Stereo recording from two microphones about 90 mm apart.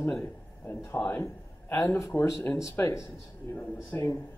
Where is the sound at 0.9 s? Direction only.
20° left (ahead or behind).